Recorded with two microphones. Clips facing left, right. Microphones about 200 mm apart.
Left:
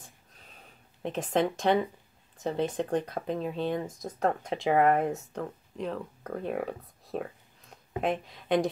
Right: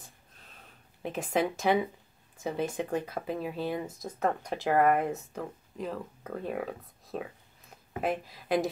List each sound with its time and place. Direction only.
1.0 s speech: 5° right (ahead or behind)